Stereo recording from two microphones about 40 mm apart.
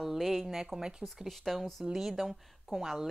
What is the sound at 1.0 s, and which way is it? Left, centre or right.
Speech, centre.